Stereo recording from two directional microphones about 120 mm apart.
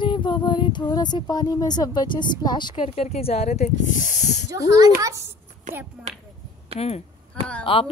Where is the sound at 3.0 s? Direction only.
55° left (ahead or behind); by 4.5 s 75° left (ahead or behind).